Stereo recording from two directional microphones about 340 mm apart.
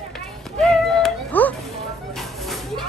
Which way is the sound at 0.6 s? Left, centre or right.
Centre.